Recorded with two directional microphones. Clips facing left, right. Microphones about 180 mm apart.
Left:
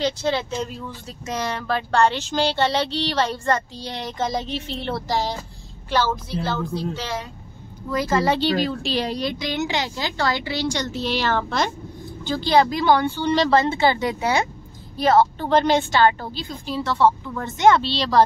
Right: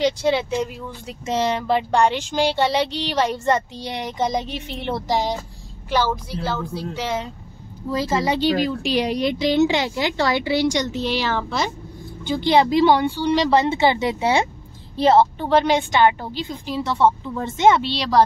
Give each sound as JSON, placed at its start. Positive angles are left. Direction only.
{"t": 0.0, "sound": "speech", "side_deg": -10}
{"t": 8.2, "sound": "speech", "side_deg": -15}
{"t": 12.3, "sound": "speech", "side_deg": -20}
{"t": 15.3, "sound": "speech", "side_deg": -10}